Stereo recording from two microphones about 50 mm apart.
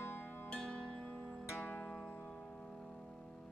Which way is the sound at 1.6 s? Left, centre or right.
Left.